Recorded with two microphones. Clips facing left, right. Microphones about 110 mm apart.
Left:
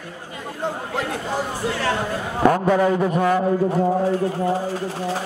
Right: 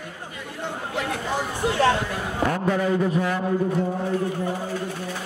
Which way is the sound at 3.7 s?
35° left (ahead or behind).